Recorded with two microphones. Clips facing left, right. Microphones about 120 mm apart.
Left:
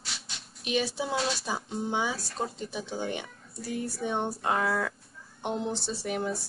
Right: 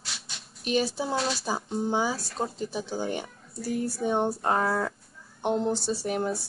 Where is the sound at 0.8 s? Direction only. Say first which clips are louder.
Right 2 dB; centre (ahead or behind).